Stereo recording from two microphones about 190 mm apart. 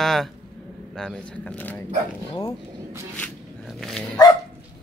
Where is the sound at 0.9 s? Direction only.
5° left (ahead or behind).